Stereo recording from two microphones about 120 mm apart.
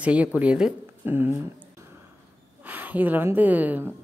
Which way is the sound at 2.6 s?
15° right (ahead or behind).